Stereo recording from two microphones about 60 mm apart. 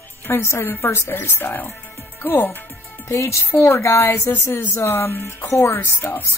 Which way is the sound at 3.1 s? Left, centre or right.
Left.